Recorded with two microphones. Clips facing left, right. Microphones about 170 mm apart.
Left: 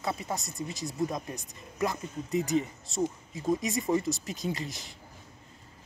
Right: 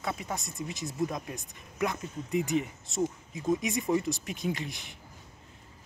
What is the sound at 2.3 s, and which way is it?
Speech, 40° left (ahead or behind).